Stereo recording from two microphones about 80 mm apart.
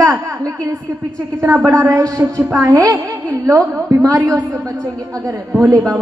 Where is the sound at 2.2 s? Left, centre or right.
Right.